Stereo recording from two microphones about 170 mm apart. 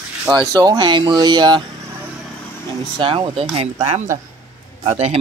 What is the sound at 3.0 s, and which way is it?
Speech, 30° right (ahead or behind).